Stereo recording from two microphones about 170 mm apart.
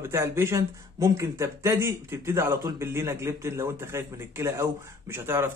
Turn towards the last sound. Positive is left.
turn(degrees=-15)  # may be behind; listen again after turning